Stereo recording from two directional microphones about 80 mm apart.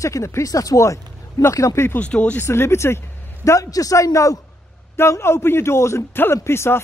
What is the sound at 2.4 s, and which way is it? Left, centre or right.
A man's voice, left.